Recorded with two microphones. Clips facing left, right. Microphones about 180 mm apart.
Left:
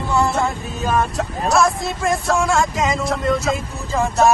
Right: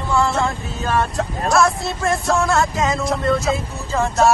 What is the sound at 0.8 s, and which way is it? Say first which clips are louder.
Speech: even; centre (ahead or behind).